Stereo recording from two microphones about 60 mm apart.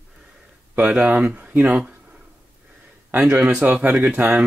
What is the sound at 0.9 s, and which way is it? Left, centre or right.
Speech, right.